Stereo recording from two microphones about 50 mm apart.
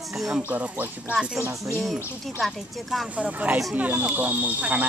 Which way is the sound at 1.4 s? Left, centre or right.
Right.